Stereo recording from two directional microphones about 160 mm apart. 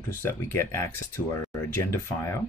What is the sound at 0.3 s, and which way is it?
Speech, 15° left (ahead or behind).